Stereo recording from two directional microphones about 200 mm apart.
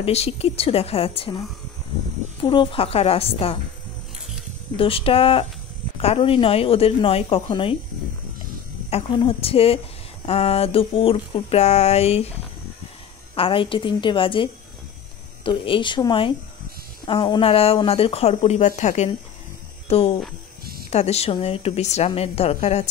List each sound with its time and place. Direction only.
0.0 s speech: 30° left (ahead or behind)
2.4 s speech: 25° left (ahead or behind)
4.7 s speech: 25° left (ahead or behind)
8.9 s speech: 30° left (ahead or behind)
10.2 s a sound: 30° left (ahead or behind)
13.3 s speech: 25° left (ahead or behind)
18.7 s a sound: 35° left (ahead or behind)